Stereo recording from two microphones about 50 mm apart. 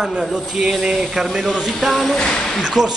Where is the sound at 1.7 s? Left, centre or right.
Centre.